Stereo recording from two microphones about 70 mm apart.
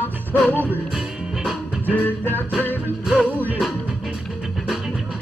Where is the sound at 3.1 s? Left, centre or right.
Centre.